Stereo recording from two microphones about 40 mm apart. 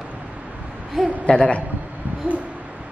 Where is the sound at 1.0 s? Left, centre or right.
Centre.